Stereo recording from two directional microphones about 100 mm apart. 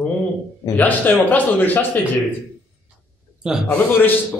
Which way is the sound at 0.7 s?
15° left (ahead or behind).